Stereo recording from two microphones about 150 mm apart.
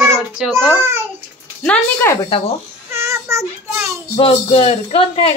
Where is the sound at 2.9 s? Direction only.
15° right (ahead or behind).